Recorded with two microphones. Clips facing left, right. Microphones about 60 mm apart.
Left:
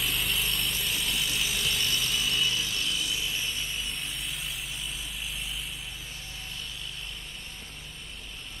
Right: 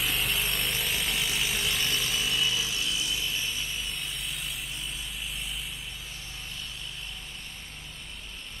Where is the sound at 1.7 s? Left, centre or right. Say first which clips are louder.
Even; centre.